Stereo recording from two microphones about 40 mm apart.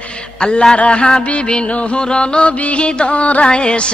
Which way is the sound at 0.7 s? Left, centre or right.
Left.